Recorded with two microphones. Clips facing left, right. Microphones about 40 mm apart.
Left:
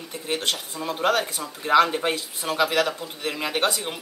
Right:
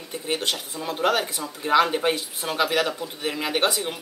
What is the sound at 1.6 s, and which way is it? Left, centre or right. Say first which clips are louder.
A man's voice: left 1 dB; centre.